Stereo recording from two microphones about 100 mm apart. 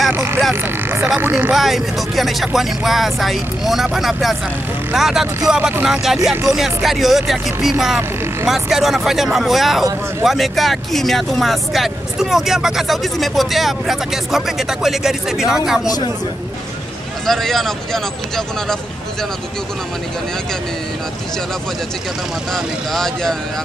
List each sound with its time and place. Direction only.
0.1 s vehicle: 25° right (ahead or behind)
1.5 s speech: 5° right (ahead or behind)
17.3 s speech: 5° left (ahead or behind)
22.5 s speech: 5° left (ahead or behind)